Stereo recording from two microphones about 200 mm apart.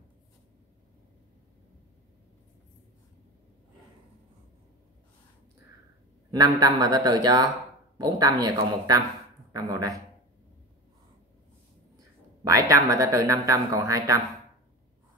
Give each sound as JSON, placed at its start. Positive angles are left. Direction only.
{"t": 6.3, "sound": "speech", "side_deg": -20}
{"t": 12.4, "sound": "speech", "side_deg": -15}